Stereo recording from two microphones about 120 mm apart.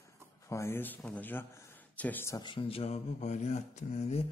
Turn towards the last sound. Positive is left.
turn(degrees=65)  # may be behind; listen again after turning